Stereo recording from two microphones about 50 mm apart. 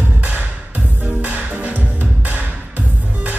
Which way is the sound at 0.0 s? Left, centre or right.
Right.